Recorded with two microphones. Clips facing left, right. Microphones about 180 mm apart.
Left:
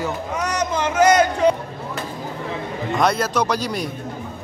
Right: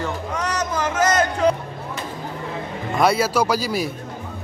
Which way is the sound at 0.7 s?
20° left (ahead or behind).